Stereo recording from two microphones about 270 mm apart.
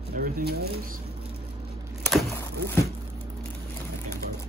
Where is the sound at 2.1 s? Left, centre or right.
Centre.